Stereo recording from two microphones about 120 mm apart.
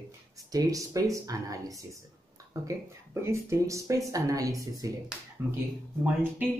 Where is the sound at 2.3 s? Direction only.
25° right (ahead or behind).